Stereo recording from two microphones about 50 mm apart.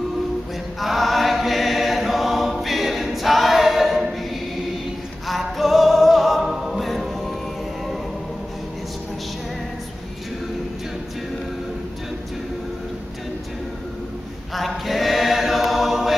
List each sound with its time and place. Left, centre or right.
0.7 s choir: centre
5.3 s music: centre
14.5 s chant: centre